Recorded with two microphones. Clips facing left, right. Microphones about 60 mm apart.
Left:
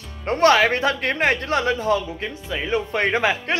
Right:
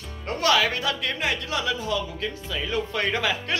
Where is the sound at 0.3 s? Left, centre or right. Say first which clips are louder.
Left 6 dB; left.